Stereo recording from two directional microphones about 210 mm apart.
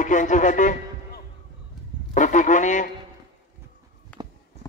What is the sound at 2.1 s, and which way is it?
Speech, 35° left (ahead or behind).